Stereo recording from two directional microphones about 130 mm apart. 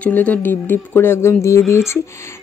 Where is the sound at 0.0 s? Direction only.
10° left (ahead or behind).